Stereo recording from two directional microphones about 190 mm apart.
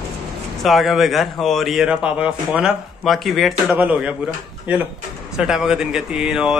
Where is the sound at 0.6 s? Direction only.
Centre (ahead or behind).